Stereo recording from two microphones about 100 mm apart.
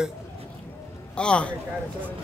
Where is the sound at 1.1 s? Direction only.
10° left (ahead or behind).